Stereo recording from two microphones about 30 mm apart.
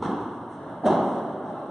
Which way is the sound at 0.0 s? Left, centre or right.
Centre.